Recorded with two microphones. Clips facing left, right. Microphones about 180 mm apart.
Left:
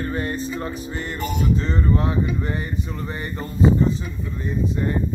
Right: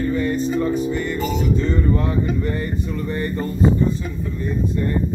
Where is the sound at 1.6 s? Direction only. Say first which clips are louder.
Right 3 dB; 20° right (ahead or behind).